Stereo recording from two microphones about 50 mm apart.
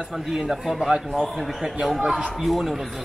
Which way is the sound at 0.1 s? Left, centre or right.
Centre.